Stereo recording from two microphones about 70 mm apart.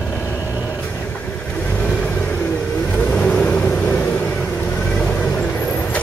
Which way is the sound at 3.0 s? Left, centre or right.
Centre.